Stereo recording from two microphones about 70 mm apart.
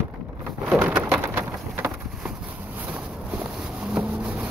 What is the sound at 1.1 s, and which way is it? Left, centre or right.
Rain, right.